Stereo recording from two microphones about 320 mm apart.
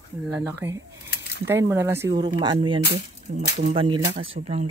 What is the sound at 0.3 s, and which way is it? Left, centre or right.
Speech, centre.